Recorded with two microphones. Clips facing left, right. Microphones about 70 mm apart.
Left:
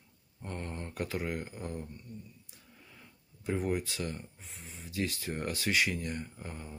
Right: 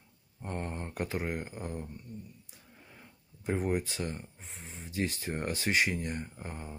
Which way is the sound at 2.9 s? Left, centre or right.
Right.